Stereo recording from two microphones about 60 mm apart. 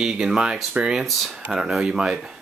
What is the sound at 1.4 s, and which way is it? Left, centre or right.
Speech, centre.